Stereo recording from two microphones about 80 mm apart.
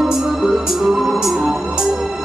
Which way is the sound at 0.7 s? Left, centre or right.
Centre.